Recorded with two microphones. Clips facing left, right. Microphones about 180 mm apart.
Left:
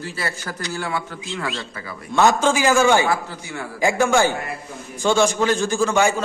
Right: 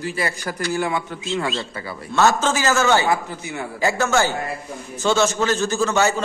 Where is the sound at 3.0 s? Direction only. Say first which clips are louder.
Right 1 dB; 20° right (ahead or behind).